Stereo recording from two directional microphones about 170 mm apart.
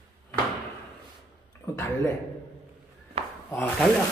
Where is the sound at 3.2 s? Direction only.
35° right (ahead or behind).